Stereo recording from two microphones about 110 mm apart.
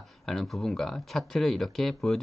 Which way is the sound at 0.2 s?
5° left (ahead or behind).